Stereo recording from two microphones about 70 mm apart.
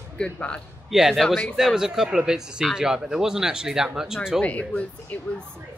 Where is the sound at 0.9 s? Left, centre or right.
Centre.